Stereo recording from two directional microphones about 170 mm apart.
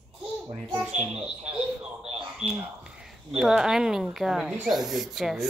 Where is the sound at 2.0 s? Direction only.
35° right (ahead or behind).